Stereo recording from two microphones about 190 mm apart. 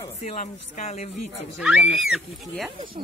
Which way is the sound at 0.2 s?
35° left (ahead or behind).